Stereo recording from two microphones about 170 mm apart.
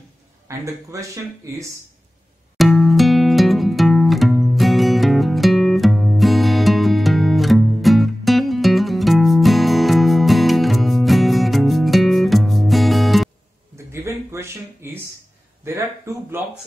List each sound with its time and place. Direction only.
1.1 s speech: 20° right (ahead or behind)
2.5 s music: centre (ahead or behind)
14.0 s a sound: 15° right (ahead or behind)
15.6 s speech: 15° right (ahead or behind)